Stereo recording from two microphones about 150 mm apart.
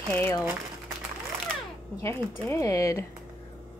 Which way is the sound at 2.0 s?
20° left (ahead or behind).